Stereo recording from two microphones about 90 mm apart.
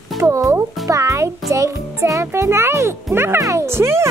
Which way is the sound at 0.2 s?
35° right (ahead or behind).